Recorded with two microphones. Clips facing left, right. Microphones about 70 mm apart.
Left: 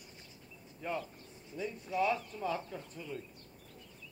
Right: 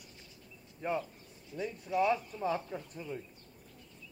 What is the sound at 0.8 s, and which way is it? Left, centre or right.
Speech, right.